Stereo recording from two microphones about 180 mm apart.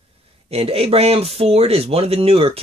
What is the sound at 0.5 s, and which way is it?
Speech, 35° right (ahead or behind).